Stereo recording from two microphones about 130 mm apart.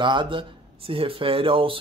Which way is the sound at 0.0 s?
40° right (ahead or behind).